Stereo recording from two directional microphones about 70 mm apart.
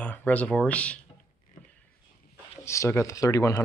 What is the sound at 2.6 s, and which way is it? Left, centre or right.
Speech, left.